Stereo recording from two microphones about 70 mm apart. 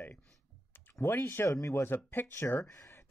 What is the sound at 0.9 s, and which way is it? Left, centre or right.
Speech, left.